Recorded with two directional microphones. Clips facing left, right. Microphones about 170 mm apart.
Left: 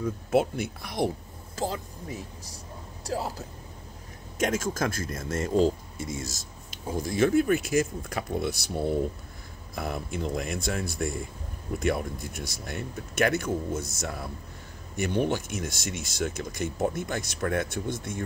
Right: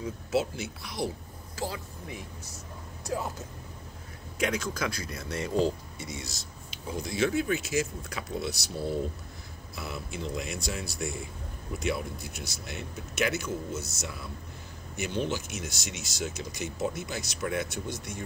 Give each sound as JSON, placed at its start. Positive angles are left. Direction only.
{"t": 0.0, "sound": "speech", "side_deg": 55}
{"t": 2.0, "sound": "speech", "side_deg": 35}
{"t": 4.4, "sound": "a man's voice", "side_deg": 45}